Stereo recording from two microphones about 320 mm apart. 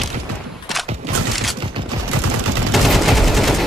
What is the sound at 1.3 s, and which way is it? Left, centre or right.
Fusillade, centre.